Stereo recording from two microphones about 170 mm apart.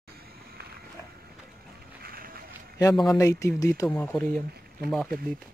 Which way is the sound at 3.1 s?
20° left (ahead or behind).